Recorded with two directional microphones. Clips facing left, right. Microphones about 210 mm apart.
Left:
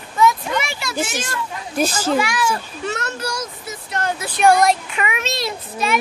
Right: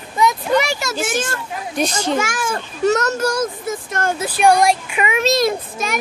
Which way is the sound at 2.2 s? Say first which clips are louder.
Left 1 dB; 50° right (ahead or behind).